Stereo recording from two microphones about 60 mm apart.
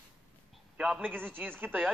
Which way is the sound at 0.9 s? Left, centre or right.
Right.